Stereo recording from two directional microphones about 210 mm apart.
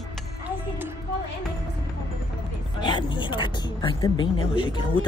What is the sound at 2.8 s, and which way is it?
Speech, 20° left (ahead or behind).